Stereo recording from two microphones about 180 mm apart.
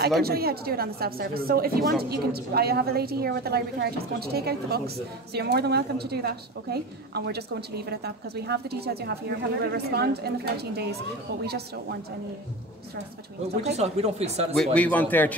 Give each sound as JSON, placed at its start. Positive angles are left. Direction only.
{"t": 0.2, "sound": "a woman's voice", "side_deg": -60}
{"t": 13.7, "sound": "speech", "side_deg": -35}
{"t": 14.5, "sound": "speech", "side_deg": 5}